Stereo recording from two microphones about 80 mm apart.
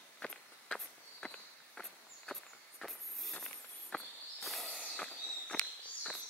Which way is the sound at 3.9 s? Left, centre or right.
Centre.